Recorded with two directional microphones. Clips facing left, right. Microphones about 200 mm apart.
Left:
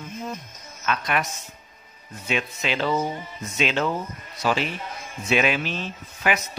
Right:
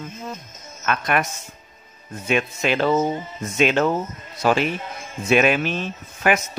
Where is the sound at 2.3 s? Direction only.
50° right (ahead or behind).